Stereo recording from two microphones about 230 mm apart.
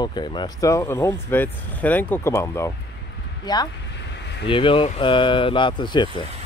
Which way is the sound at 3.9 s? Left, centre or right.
Left.